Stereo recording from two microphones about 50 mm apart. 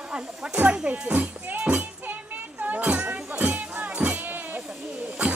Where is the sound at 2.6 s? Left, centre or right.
Right.